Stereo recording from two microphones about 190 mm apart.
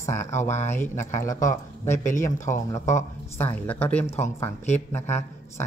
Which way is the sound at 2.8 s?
40° left (ahead or behind).